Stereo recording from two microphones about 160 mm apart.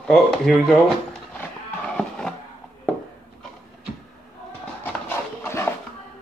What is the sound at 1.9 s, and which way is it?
Music, 5° left (ahead or behind).